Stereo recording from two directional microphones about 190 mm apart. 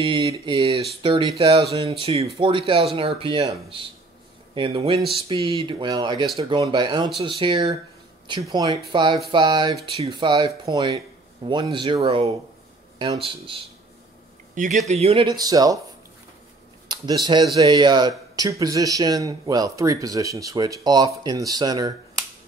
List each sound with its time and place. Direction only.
0.0 s speech: 25° right (ahead or behind)
14.5 s speech: 40° right (ahead or behind)
14.9 s speech: 30° right (ahead or behind)
16.8 s speech: 25° right (ahead or behind)